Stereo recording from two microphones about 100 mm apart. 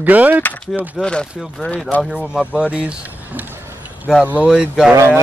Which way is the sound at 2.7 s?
10° right (ahead or behind).